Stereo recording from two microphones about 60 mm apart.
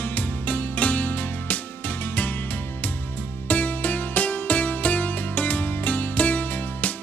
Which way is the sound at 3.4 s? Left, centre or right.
Left.